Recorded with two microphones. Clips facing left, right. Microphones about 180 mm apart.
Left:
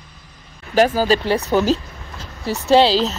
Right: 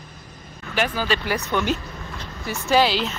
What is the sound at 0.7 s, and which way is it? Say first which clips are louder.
Speech: left 8 dB; 40° left (ahead or behind).